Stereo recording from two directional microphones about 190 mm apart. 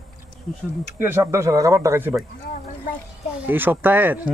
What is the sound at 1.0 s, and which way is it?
Speech, 10° right (ahead or behind).